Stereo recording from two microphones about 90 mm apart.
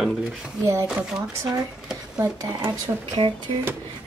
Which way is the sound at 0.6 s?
35° right (ahead or behind).